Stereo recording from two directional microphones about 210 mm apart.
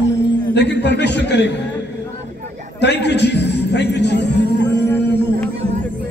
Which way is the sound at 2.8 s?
55° left (ahead or behind).